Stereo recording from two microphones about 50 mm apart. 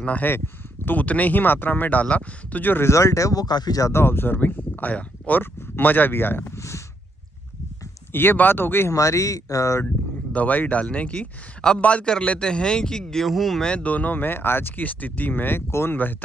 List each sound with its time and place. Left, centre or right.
0.0 s speech: left
2.8 s speech: left
4.0 s speech: left
5.4 s speech: left
6.5 s speech: left
8.1 s speech: left
8.9 s speech: left
10.3 s a man's voice: left; by 13.7 s centre
13.7 s speech: left
15.7 s speech: left